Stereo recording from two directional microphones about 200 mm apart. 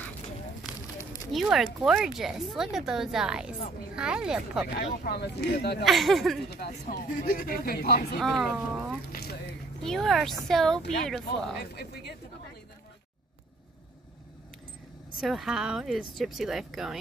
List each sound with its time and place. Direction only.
1.3 s speech: centre (ahead or behind)
4.7 s speech: 50° left (ahead or behind)
5.9 s speech: centre (ahead or behind)
6.5 s speech: 50° left (ahead or behind)
8.2 s speech: centre (ahead or behind)
9.1 s squish: 50° left (ahead or behind)
9.8 s speech: centre (ahead or behind)
11.7 s speech: 55° left (ahead or behind)
15.1 s speech: centre (ahead or behind)